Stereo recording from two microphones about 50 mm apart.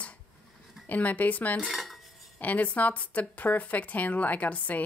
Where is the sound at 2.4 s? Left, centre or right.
Left.